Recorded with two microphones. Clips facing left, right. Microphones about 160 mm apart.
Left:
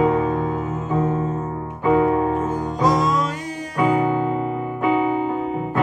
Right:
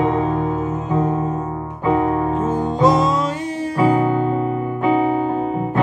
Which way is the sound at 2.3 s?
25° right (ahead or behind).